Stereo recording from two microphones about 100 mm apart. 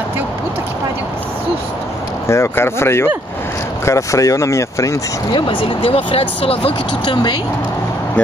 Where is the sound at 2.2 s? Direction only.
30° left (ahead or behind).